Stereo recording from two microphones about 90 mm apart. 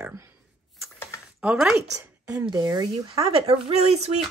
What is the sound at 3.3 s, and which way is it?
Speech, 90° right.